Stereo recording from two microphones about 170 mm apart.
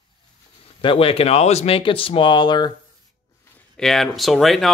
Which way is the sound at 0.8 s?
35° left (ahead or behind).